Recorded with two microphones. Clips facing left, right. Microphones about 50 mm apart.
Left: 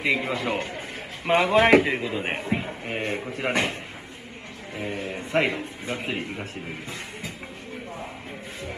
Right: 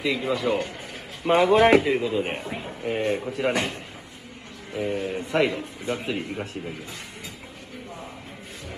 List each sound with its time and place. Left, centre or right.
0.0 s a man's voice: left
4.7 s a man's voice: left